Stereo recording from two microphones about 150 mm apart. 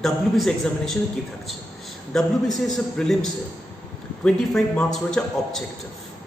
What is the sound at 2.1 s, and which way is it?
A man's voice, centre (ahead or behind).